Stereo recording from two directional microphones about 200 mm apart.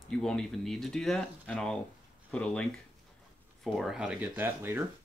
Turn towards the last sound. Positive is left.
turn(degrees=-10)  # may be behind; listen again after turning